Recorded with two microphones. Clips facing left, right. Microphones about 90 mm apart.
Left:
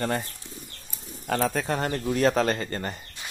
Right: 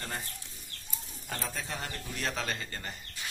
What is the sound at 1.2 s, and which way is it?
Speech, 75° left (ahead or behind).